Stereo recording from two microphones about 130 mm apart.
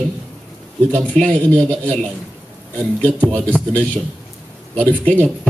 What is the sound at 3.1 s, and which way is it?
Speech, 15° right (ahead or behind).